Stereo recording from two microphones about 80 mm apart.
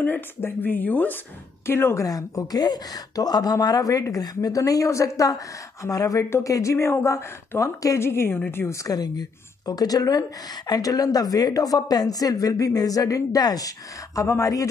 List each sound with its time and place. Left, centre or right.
0.0 s a woman's voice: left
2.0 s a woman's voice: left
8.1 s a woman's voice: left
8.8 s a woman's voice: left